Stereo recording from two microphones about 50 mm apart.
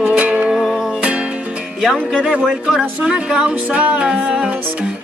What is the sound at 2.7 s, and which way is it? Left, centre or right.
Music, centre.